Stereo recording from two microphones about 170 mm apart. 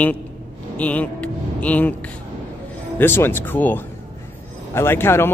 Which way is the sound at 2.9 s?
15° left (ahead or behind).